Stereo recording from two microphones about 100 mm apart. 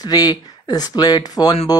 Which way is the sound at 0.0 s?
40° left (ahead or behind).